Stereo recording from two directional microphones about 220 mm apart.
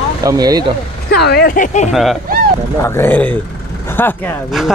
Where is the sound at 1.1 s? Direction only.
45° left (ahead or behind).